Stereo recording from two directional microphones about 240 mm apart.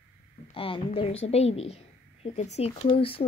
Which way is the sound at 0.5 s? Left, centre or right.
Left.